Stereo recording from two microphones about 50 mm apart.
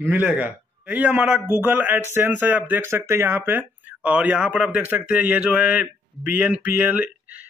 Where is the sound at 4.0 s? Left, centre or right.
Right.